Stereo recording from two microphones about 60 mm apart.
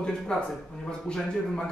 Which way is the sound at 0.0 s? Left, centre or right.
Centre.